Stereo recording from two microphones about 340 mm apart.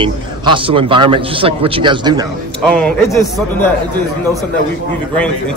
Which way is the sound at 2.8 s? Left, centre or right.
Centre.